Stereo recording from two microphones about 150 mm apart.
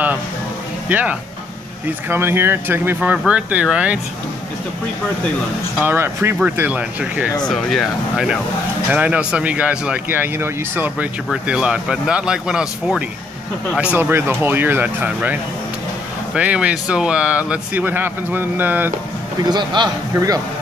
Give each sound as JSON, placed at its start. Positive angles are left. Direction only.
{"t": 0.8, "sound": "speech", "side_deg": -10}
{"t": 5.9, "sound": "speech", "side_deg": -15}
{"t": 7.4, "sound": "speech", "side_deg": 0}
{"t": 16.3, "sound": "speech", "side_deg": -10}
{"t": 19.5, "sound": "a man's voice", "side_deg": -30}